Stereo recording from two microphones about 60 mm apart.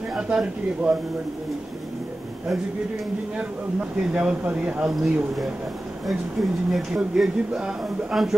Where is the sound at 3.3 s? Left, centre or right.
Centre.